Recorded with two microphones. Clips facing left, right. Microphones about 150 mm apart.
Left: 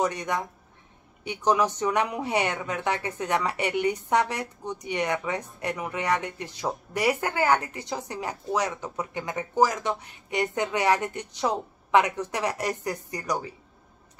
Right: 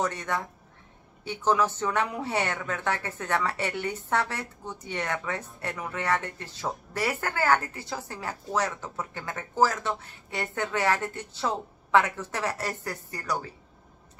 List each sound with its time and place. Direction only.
0.0 s speech: 15° left (ahead or behind)